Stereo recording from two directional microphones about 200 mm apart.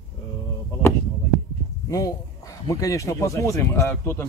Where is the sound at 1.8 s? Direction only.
15° left (ahead or behind).